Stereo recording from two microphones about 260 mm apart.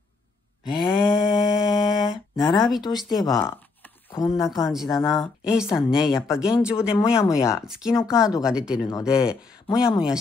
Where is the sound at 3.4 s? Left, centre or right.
Centre.